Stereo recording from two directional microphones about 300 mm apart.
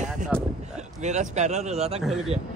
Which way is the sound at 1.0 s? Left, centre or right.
Right.